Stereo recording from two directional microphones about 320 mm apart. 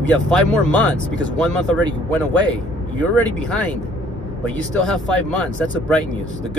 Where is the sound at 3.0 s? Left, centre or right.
Centre.